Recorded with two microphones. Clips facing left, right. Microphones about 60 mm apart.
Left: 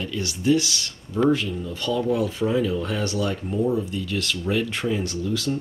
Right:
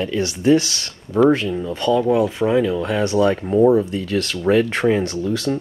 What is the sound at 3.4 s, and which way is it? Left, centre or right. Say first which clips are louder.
Speech: right 9 dB; right.